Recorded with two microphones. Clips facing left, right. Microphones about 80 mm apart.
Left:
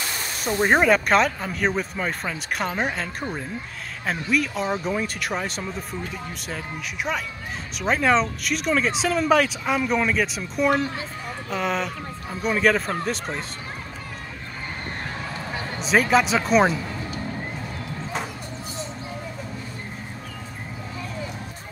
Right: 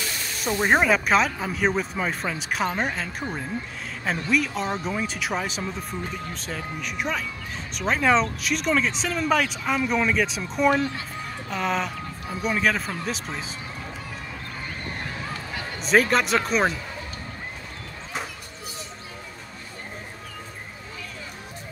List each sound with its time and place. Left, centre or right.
0.4 s speech: centre
15.8 s speech: centre